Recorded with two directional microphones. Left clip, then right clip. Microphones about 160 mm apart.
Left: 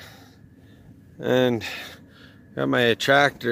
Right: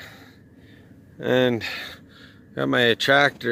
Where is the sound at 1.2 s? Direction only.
5° left (ahead or behind).